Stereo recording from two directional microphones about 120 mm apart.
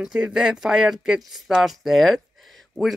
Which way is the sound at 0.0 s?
5° right (ahead or behind).